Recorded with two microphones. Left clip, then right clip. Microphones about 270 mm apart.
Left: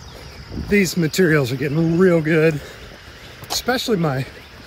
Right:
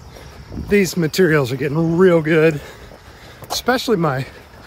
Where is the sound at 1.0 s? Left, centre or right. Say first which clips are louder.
Right 2 dB; centre.